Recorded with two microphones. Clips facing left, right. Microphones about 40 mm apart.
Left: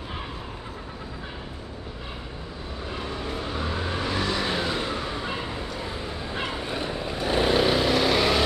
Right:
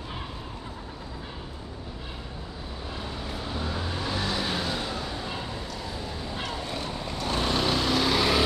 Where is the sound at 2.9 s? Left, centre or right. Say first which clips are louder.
Left 4 dB; left.